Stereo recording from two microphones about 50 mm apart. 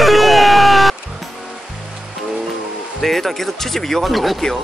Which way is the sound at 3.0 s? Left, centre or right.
Centre.